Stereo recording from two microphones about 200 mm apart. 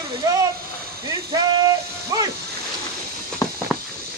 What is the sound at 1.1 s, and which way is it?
Speech, 20° right (ahead or behind).